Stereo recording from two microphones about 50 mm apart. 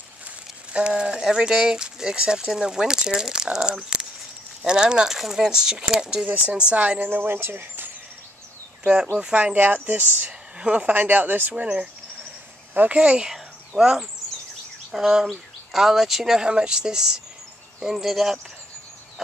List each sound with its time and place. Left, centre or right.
0.7 s speech: centre
6.2 s speech: right
7.1 s speech: right
9.3 s speech: right
10.6 s speech: right
11.5 s speech: right
13.3 s a sound: centre
14.9 s speech: centre